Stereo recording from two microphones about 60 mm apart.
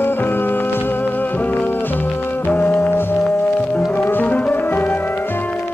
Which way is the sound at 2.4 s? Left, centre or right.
Left.